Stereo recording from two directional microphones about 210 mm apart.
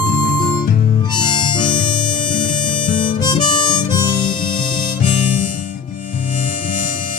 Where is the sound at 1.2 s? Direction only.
20° left (ahead or behind).